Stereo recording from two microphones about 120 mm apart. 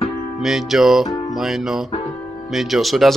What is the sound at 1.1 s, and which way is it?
Music, 35° left (ahead or behind).